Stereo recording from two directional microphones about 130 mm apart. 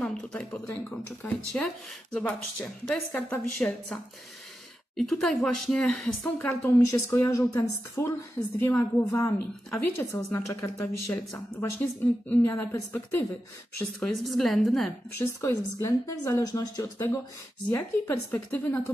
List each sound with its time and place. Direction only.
0.0 s a sound: 5° left (ahead or behind)
0.8 s a woman's voice: 10° left (ahead or behind)
14.2 s speech: centre (ahead or behind)
15.1 s a woman's voice: 25° left (ahead or behind)